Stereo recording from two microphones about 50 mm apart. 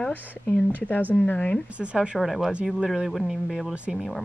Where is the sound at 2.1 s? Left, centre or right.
Centre.